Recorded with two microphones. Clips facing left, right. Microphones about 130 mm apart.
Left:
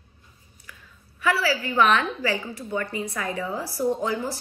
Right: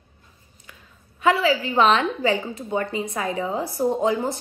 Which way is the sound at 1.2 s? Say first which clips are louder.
Right 4 dB; 20° right (ahead or behind).